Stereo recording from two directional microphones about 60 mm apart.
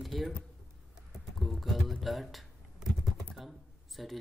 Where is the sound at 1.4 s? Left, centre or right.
Centre.